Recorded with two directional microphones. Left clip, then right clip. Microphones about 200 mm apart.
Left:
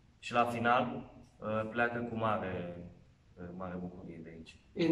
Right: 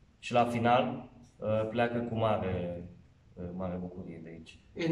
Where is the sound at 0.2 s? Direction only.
15° right (ahead or behind).